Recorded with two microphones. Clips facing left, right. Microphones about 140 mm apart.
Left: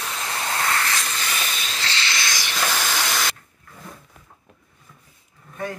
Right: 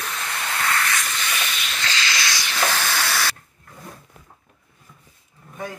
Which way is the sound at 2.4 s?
15° left (ahead or behind).